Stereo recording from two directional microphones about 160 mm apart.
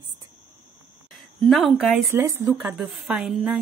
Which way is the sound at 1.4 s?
Centre (ahead or behind).